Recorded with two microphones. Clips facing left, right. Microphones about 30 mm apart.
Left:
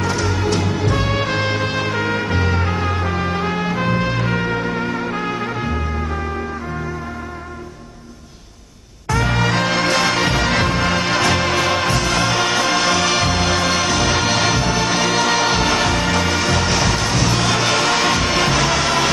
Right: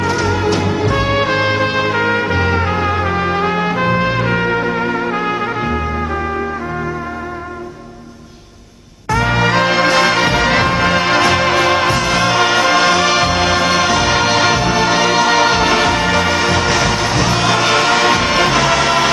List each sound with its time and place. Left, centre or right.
0.0 s music: centre
9.1 s music: centre